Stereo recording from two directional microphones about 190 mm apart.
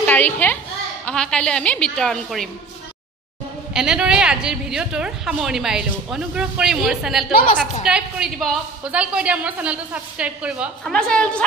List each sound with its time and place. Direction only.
0.0 s a child's voice: 10° left (ahead or behind)
3.7 s a woman's voice: 5° right (ahead or behind)
7.3 s a woman's voice: 45° left (ahead or behind)
7.8 s a woman's voice: 5° right (ahead or behind)
10.9 s a woman's voice: 5° left (ahead or behind)